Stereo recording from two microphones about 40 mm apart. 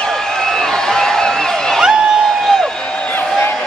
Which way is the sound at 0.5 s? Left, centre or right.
Centre.